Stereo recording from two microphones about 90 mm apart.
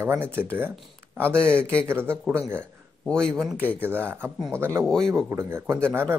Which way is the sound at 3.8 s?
25° right (ahead or behind).